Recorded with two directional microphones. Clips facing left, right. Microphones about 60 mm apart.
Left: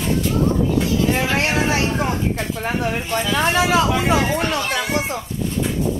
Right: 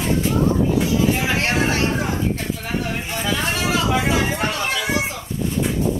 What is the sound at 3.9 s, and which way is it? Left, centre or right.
Speech, centre.